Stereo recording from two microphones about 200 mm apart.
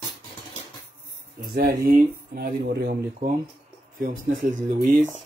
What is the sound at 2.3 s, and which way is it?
Speech, 50° right (ahead or behind).